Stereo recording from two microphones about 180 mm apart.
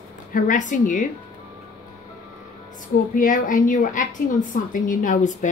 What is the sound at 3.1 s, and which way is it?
A woman's voice, 45° left (ahead or behind).